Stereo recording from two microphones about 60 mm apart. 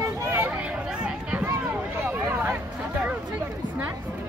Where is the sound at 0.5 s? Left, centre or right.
Centre.